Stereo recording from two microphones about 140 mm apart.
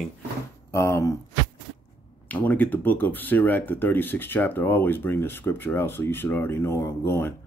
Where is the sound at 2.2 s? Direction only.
10° left (ahead or behind).